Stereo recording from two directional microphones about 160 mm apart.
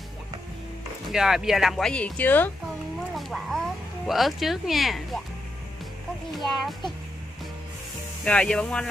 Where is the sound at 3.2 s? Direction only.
Centre (ahead or behind).